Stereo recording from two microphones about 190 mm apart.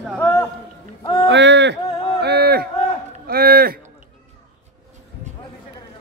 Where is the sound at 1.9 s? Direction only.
25° left (ahead or behind).